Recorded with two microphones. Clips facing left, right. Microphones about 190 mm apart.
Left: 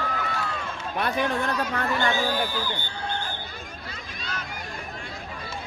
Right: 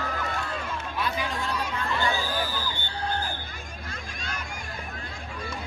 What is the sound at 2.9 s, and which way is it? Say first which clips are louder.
Hubbub: right 1 dB; 35° right (ahead or behind).